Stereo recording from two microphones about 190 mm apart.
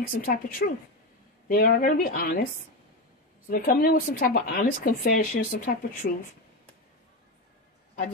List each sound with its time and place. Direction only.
0.2 s speech: 50° left (ahead or behind)
3.4 s speech: 50° left (ahead or behind)